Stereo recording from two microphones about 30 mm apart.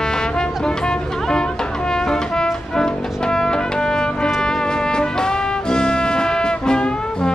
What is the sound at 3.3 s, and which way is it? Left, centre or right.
Brass instrument, left.